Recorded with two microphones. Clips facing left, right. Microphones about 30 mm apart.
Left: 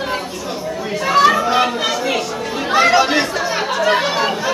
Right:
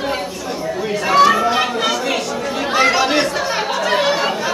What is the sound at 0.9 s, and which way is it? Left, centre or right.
Chatter, centre.